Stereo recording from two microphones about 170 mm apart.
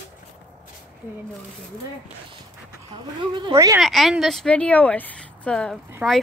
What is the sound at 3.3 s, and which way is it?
Speech, 25° right (ahead or behind).